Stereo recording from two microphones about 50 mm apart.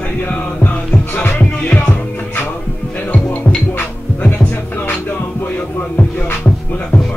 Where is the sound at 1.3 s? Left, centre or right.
Left.